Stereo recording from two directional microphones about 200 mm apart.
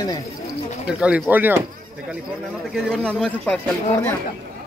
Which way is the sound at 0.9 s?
5° right (ahead or behind).